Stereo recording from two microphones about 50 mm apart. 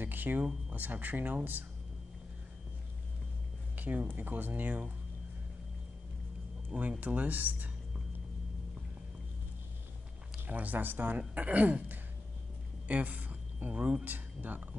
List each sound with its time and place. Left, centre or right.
0.0 s a sound: right
0.7 s speech: right
3.7 s a sound: right
4.1 s speech: right
6.7 s speech: right
10.5 s speech: right